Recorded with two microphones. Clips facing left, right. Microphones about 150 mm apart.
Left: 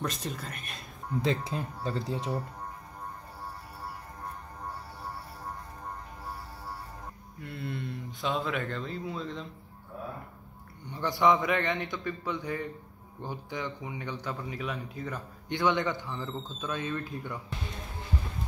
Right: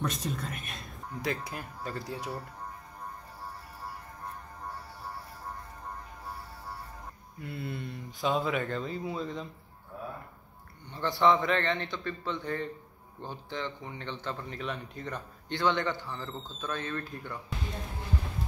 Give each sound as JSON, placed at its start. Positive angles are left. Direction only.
{"t": 0.0, "sound": "speech", "side_deg": 0}
{"t": 1.2, "sound": "speech", "side_deg": 25}
{"t": 7.4, "sound": "speech", "side_deg": -5}
{"t": 10.9, "sound": "speech", "side_deg": 15}
{"t": 15.5, "sound": "speech", "side_deg": 15}